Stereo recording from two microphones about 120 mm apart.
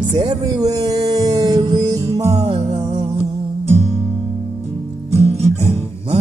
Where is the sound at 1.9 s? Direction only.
30° right (ahead or behind).